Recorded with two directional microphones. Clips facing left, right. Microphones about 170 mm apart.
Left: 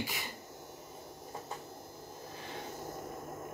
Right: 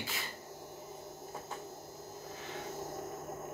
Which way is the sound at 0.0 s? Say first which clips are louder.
Left 3 dB; 15° left (ahead or behind).